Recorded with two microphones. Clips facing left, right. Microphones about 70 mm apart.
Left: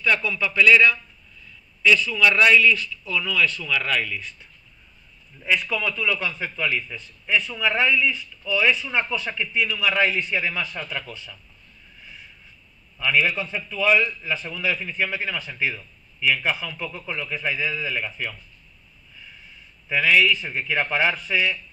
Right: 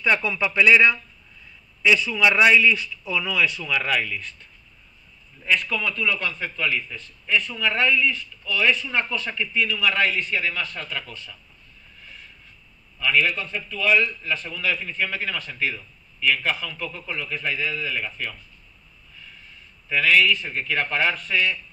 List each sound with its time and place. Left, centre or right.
0.0 s a man's voice: right; by 4.5 s centre
5.6 s a man's voice: centre
13.0 s a man's voice: centre
19.9 s a man's voice: centre